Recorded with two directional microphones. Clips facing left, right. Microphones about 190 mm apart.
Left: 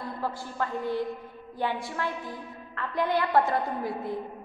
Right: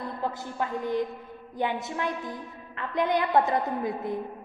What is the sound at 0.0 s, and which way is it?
A woman's voice, 20° right (ahead or behind).